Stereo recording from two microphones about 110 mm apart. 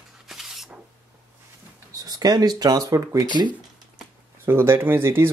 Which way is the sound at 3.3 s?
45° right (ahead or behind).